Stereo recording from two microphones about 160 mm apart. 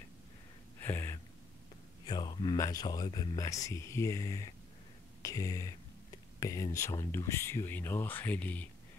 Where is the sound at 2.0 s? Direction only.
25° left (ahead or behind); by 8.6 s 10° left (ahead or behind).